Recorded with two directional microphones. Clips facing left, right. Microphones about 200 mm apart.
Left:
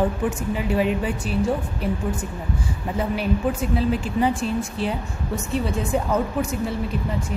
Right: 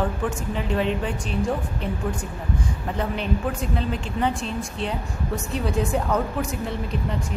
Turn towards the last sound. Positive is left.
turn(degrees=5)  # may be behind; listen again after turning